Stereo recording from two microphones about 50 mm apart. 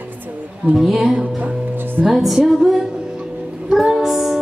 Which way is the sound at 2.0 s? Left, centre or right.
Centre.